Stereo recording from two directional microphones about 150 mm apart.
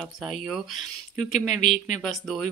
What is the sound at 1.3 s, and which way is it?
Speech, 50° left (ahead or behind).